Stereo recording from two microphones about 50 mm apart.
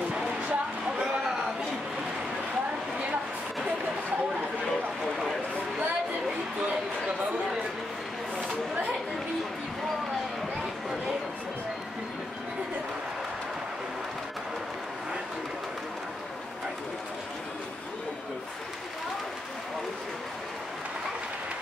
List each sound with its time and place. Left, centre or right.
0.1 s music: right